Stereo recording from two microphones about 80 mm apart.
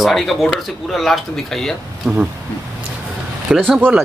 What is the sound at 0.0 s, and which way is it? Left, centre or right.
Speech, centre.